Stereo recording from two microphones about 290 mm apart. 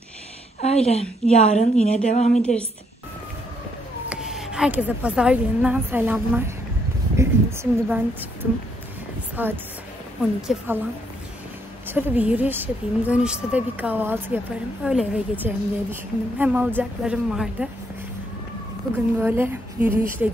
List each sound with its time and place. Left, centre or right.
0.6 s a woman's voice: left
4.1 s a woman's voice: centre
11.9 s a woman's voice: centre
19.1 s speech: centre